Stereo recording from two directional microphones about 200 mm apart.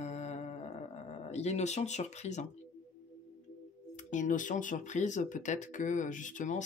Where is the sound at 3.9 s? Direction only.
40° left (ahead or behind).